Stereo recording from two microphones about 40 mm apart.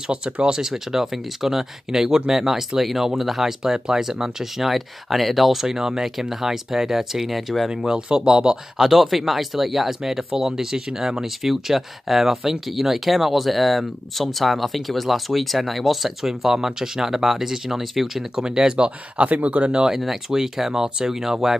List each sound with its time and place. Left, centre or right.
0.0 s speech: right; by 7.7 s centre
7.7 s speech: centre
18.4 s speech: centre
19.2 s speech: right
19.9 s speech: centre